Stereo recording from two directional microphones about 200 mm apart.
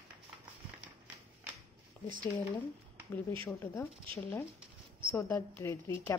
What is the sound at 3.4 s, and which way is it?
Speech, 10° left (ahead or behind).